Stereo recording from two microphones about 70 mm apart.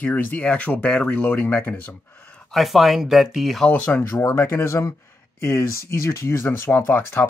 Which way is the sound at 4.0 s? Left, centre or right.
Left.